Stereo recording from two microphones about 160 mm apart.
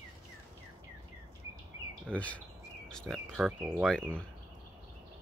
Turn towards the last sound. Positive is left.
turn(degrees=0)  # may be behind; listen again after turning